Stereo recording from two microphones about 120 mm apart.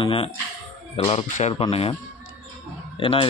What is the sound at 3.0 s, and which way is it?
Speech, 50° left (ahead or behind).